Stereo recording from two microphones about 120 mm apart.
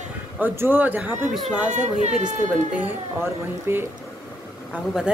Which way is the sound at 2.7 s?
15° right (ahead or behind).